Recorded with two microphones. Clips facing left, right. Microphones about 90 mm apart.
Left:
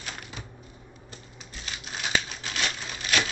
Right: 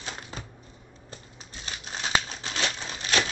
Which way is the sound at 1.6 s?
35° right (ahead or behind).